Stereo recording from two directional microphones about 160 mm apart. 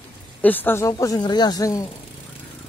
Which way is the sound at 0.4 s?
10° left (ahead or behind).